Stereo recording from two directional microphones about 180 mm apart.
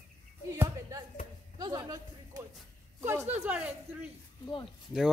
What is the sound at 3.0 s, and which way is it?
Speech, 10° right (ahead or behind).